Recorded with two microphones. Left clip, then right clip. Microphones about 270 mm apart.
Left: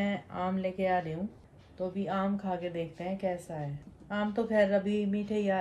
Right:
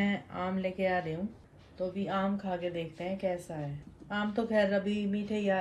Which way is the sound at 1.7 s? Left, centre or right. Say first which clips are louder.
Even; centre.